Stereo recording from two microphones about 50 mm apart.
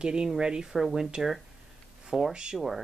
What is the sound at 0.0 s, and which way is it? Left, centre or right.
A woman's voice, centre.